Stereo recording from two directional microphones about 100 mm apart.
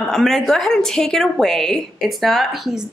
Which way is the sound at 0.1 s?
5° left (ahead or behind).